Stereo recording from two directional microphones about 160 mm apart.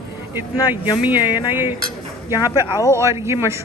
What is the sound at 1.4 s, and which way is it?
Speech, 15° right (ahead or behind).